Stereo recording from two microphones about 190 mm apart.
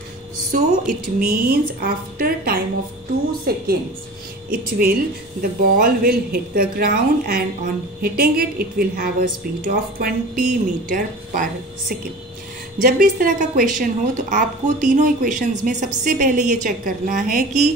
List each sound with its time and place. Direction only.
0.5 s a woman's voice: 45° right (ahead or behind)
12.8 s a woman's voice: 45° right (ahead or behind)